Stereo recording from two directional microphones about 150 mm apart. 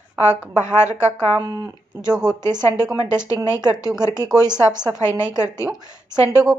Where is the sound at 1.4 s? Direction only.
25° right (ahead or behind).